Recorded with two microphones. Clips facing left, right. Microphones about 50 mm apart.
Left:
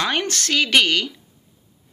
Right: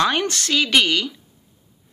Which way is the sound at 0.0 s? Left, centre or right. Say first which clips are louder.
Right 3 dB; left.